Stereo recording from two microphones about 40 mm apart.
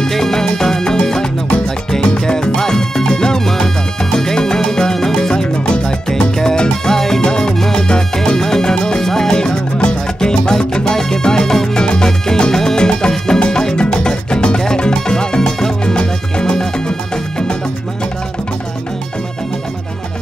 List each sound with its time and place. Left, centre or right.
0.0 s music: centre